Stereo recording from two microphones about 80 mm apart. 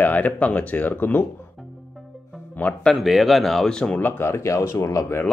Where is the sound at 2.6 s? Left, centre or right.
Left.